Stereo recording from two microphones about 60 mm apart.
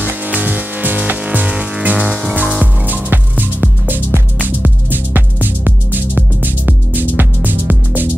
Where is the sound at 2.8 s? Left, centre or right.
Right.